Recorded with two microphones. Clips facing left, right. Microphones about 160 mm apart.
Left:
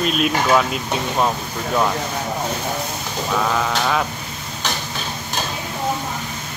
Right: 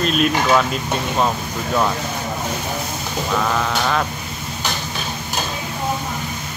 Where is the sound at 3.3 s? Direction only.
5° left (ahead or behind).